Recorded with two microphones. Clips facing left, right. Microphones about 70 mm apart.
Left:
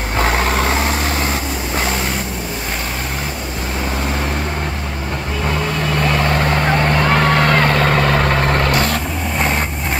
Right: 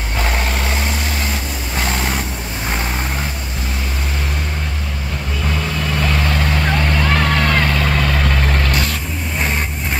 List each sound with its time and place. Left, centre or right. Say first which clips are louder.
6.8 s vehicle: left 3 dB; left